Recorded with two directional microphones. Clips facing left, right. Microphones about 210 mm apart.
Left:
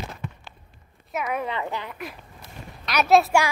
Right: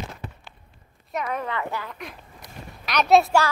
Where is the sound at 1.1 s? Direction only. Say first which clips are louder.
Left 1 dB; 10° left (ahead or behind).